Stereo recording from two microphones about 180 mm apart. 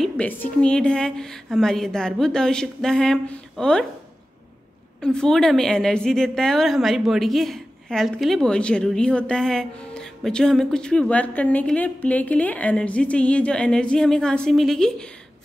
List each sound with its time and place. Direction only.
0.0 s a woman's voice: 5° left (ahead or behind)
5.0 s a woman's voice: 5° left (ahead or behind)